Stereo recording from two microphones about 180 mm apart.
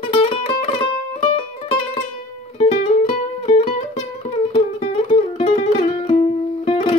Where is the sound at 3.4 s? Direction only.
35° left (ahead or behind).